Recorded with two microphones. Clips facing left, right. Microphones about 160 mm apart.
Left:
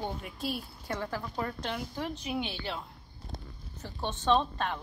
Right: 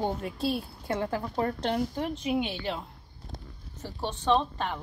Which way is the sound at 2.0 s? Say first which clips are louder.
Right 5 dB; 20° right (ahead or behind).